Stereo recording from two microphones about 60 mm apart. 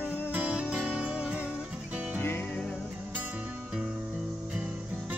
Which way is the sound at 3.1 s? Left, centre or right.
Right.